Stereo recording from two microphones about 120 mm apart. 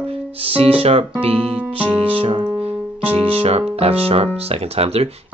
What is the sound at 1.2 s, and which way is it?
Piano, 55° right (ahead or behind).